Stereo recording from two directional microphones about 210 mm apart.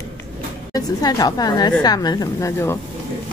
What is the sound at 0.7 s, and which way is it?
Speech, 15° left (ahead or behind).